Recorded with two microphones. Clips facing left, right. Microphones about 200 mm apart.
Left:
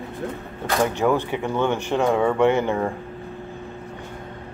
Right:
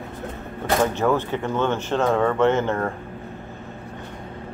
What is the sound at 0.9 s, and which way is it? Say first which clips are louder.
Speech: even; 15° left (ahead or behind).